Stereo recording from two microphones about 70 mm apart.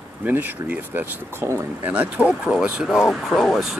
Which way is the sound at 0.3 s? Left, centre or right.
Right.